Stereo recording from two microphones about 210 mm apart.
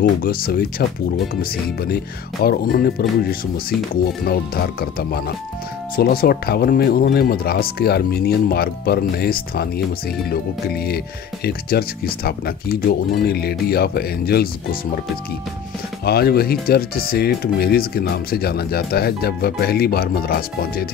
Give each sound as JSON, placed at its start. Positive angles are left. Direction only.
{"t": 0.0, "sound": "speech", "side_deg": 45}
{"t": 16.1, "sound": "speech", "side_deg": 50}